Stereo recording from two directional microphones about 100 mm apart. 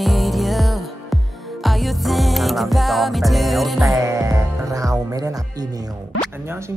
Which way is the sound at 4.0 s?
30° right (ahead or behind).